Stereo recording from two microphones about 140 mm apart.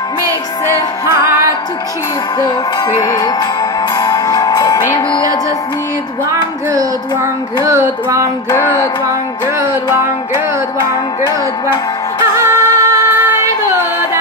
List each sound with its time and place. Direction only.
1.0 s music: 20° right (ahead or behind)
2.4 s music: 30° left (ahead or behind)
7.6 s music: 20° right (ahead or behind)
8.5 s music: 20° left (ahead or behind)
10.3 s music: 30° left (ahead or behind)
12.4 s music: 20° right (ahead or behind)